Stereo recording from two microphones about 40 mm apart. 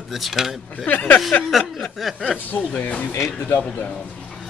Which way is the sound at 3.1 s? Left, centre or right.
Left.